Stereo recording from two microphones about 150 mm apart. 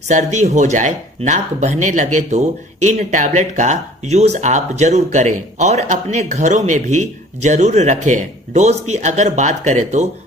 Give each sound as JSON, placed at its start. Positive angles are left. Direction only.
{"t": 0.1, "sound": "speech", "side_deg": -50}